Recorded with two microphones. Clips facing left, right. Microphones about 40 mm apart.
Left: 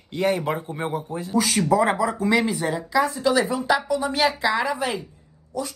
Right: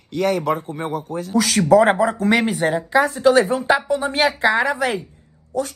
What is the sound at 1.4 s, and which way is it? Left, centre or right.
A woman's voice, right.